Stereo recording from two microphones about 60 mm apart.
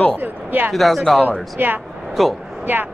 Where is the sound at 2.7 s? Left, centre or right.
Right.